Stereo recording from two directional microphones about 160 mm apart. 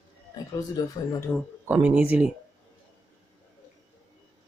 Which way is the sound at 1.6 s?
10° right (ahead or behind).